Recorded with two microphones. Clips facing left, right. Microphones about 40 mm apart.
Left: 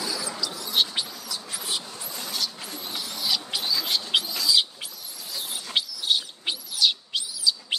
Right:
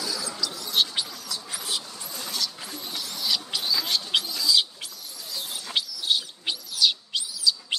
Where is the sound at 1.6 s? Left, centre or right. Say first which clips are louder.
Left 1 dB; centre.